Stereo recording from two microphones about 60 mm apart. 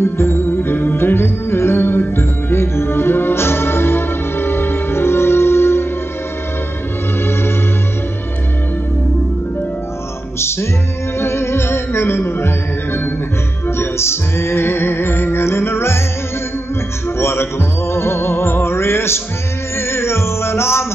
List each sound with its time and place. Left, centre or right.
0.0 s music: left
11.1 s music: left
17.2 s music: left